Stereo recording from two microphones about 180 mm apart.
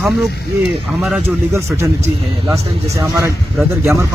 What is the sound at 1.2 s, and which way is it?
Speech, 15° right (ahead or behind).